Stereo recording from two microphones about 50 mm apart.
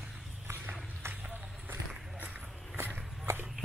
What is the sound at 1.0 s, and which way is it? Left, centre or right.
Run, right.